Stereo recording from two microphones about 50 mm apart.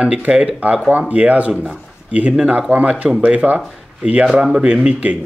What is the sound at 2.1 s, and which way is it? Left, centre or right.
Speech, right.